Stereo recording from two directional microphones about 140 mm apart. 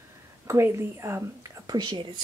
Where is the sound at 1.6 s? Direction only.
30° right (ahead or behind).